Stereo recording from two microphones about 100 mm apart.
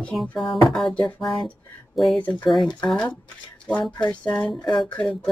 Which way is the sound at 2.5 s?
Centre (ahead or behind).